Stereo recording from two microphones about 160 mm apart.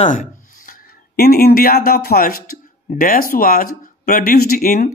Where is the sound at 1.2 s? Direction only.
70° left (ahead or behind).